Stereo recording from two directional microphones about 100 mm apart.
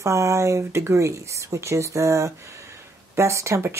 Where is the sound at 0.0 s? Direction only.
30° right (ahead or behind).